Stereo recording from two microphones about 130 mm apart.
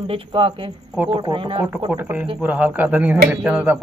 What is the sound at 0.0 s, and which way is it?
Speech, 40° right (ahead or behind).